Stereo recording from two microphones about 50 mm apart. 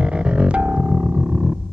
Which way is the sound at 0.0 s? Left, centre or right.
Right.